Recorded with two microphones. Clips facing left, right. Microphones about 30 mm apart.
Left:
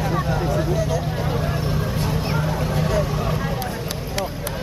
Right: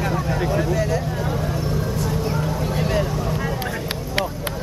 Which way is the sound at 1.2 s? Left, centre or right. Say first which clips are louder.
Even; left.